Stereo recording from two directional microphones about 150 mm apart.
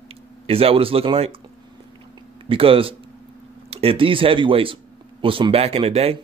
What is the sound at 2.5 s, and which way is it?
Speech, 40° right (ahead or behind).